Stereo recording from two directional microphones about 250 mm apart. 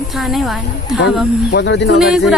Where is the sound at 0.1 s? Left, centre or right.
Centre.